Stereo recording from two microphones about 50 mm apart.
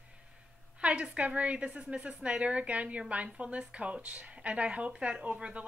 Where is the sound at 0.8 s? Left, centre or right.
Right.